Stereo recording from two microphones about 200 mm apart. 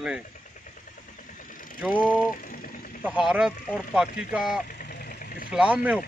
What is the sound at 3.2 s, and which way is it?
Speech, 5° right (ahead or behind).